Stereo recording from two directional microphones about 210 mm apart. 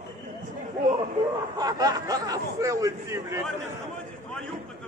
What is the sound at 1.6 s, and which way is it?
Speech, 20° right (ahead or behind).